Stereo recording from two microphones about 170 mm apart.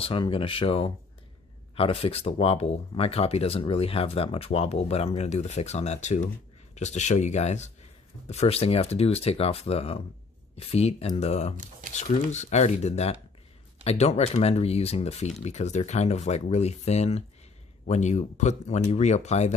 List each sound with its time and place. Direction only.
0.0 s speech: 30° left (ahead or behind)
11.5 s speech: 50° right (ahead or behind)
11.9 s speech: 45° left (ahead or behind)